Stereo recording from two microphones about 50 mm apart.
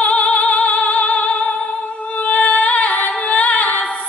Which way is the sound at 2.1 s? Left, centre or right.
Left.